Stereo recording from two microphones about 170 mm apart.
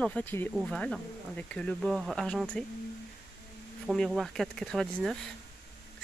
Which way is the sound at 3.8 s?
Centre (ahead or behind).